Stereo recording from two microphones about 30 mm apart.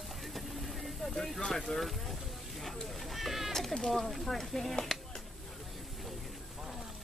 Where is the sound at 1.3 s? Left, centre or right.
Centre.